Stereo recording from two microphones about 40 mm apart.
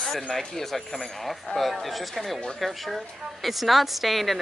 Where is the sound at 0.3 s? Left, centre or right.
Centre.